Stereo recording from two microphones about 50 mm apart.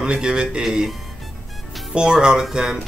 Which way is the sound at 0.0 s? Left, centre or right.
Centre.